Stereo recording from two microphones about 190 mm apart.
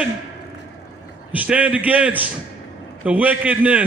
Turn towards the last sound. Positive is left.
turn(degrees=-10)  # may be behind; listen again after turning